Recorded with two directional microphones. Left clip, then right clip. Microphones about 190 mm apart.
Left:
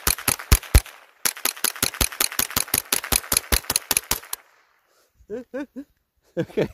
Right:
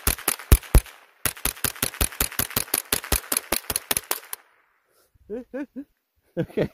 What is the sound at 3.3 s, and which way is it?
Engine, 20° right (ahead or behind).